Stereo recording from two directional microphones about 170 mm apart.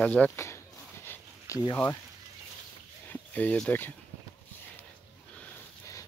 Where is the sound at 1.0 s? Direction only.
15° left (ahead or behind).